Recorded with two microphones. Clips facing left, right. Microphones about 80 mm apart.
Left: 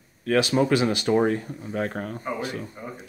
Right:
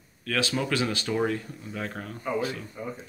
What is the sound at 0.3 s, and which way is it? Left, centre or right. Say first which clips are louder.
Speech: left 7 dB; left.